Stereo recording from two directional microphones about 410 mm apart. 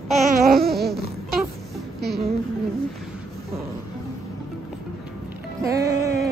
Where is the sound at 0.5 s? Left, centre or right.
Right.